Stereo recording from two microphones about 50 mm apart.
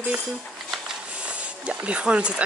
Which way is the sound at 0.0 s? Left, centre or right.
Centre.